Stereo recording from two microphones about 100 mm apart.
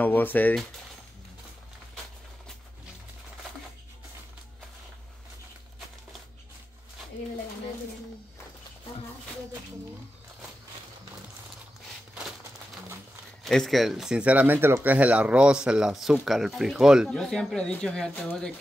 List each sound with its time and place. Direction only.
0.0 s speech: 20° left (ahead or behind)
13.4 s speech: centre (ahead or behind)
17.1 s speech: 5° left (ahead or behind)